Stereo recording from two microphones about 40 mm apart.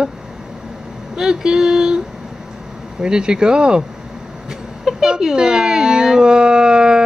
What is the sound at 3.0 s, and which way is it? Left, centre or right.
Speech, centre.